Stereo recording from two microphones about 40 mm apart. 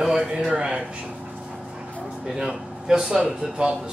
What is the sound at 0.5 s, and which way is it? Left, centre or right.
Speech, right.